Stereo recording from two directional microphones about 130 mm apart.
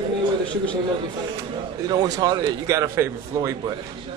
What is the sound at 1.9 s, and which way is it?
A man's voice, 30° right (ahead or behind).